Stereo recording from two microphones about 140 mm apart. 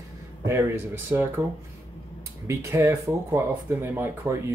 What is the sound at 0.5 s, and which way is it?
Speech, 15° right (ahead or behind).